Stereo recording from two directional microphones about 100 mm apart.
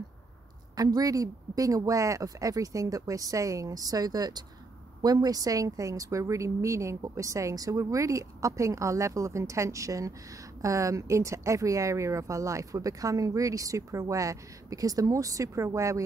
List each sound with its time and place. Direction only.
0.7 s speech: 40° right (ahead or behind)